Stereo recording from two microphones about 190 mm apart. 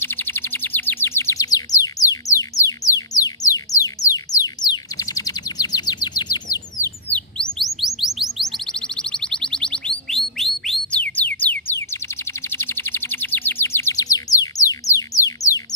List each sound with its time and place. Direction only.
0.0 s a sound: 10° left (ahead or behind)
7.1 s chirp: 5° left (ahead or behind)
12.4 s bird: 10° left (ahead or behind)